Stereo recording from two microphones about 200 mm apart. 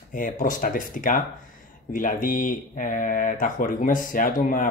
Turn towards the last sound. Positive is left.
turn(degrees=45)  # may be behind; listen again after turning